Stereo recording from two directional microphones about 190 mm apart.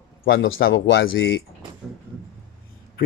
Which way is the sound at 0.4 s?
90° left.